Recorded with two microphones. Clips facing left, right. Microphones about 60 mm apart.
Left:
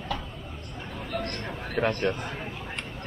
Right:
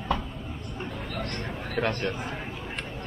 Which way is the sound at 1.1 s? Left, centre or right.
Left.